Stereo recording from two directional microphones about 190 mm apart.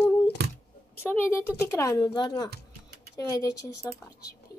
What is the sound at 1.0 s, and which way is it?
Speech, 10° left (ahead or behind).